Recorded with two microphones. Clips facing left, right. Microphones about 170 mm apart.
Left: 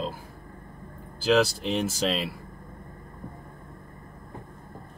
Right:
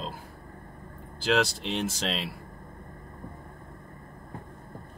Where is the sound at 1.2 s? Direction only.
5° left (ahead or behind).